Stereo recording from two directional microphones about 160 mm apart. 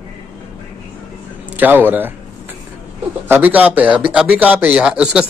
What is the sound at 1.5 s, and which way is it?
Speech, 10° right (ahead or behind).